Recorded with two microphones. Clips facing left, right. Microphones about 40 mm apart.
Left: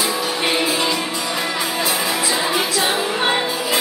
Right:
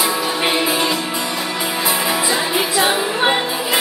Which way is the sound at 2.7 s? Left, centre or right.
Right.